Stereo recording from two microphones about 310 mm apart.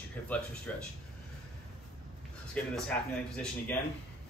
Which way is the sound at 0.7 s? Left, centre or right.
Centre.